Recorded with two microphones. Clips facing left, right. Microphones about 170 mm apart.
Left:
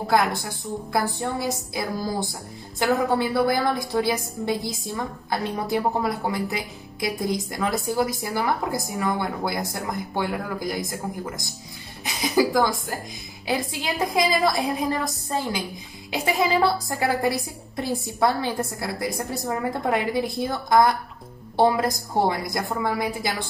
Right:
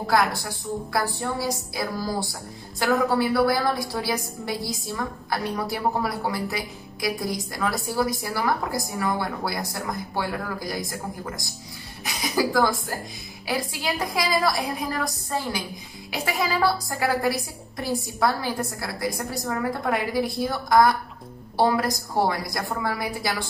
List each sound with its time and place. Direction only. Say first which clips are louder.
0.0 s a woman's voice: left 1 dB; 20° left (ahead or behind)
2.8 s a woman's voice: even; 20° left (ahead or behind)